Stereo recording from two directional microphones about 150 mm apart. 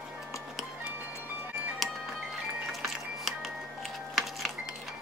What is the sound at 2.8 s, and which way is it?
Music, centre (ahead or behind).